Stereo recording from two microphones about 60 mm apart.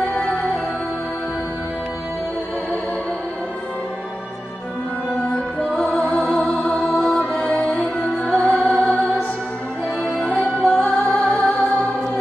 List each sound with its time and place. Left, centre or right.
0.1 s music: left
5.2 s music: centre
10.2 s music: centre